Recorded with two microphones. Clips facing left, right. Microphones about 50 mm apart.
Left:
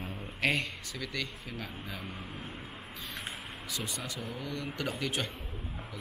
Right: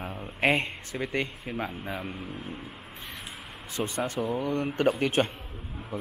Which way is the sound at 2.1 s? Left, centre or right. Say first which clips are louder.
Right 4 dB; centre.